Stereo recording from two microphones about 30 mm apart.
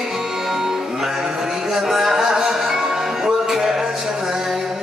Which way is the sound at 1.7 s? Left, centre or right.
Centre.